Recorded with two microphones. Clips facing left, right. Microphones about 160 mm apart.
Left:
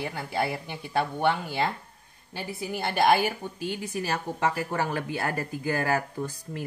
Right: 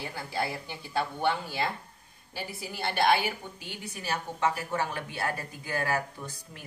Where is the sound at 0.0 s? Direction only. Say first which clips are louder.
Left 4 dB; 55° left (ahead or behind).